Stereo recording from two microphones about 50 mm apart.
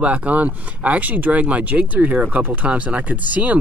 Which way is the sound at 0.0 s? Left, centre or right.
Right.